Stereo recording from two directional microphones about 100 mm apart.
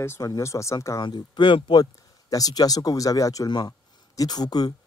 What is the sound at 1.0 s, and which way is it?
Speech, 50° left (ahead or behind).